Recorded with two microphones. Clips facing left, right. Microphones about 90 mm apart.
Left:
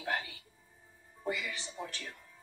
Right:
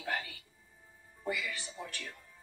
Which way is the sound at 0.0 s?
15° left (ahead or behind).